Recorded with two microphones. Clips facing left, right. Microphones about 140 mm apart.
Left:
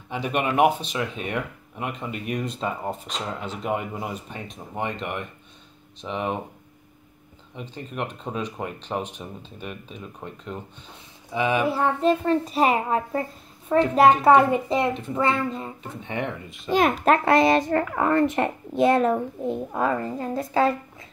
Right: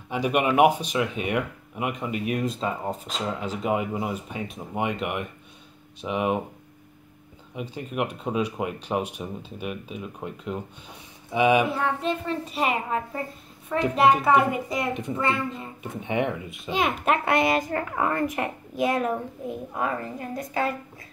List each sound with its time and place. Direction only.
0.1 s speech: 10° right (ahead or behind)
7.5 s speech: 10° right (ahead or behind)
11.6 s a child's voice: 35° left (ahead or behind)
15.8 s speech: 15° right (ahead or behind)
16.7 s a child's voice: 35° left (ahead or behind)